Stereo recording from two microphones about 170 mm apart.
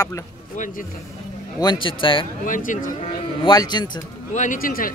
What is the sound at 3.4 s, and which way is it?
Speech, 25° left (ahead or behind).